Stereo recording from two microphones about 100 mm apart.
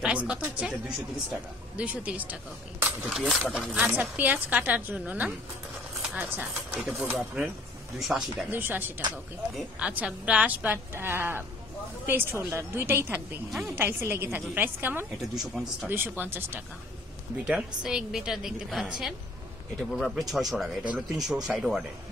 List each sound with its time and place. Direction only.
0.0 s speech: 10° right (ahead or behind)
3.1 s speech: centre (ahead or behind); by 6.8 s 15° right (ahead or behind)
6.8 s speech: 5° right (ahead or behind)
8.5 s a woman's voice: 20° right (ahead or behind)
15.3 s speech: centre (ahead or behind)
15.9 s a woman's voice: 20° right (ahead or behind)
17.8 s speech: 5° right (ahead or behind)